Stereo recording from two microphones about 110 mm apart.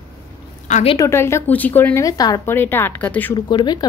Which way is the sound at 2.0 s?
35° left (ahead or behind).